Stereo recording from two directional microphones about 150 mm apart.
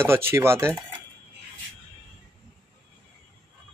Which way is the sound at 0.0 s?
15° right (ahead or behind).